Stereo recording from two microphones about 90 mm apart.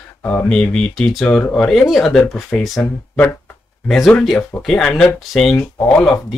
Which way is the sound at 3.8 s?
5° left (ahead or behind).